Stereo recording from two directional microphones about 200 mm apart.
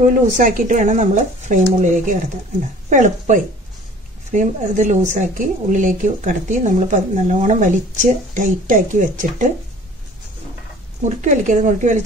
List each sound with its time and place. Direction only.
0.0 s a woman's voice: 40° right (ahead or behind)
11.1 s a woman's voice: 40° right (ahead or behind)